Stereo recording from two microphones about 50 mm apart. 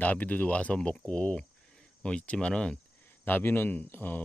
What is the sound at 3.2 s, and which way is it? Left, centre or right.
Speech, left.